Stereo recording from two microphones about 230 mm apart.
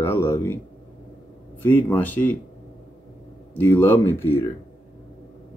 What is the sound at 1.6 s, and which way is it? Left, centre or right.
Speech, centre.